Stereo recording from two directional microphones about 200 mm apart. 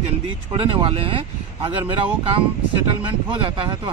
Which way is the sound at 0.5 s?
25° right (ahead or behind).